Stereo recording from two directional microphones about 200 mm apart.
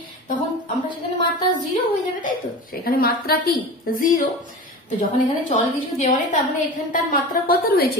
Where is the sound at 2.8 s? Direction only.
50° left (ahead or behind).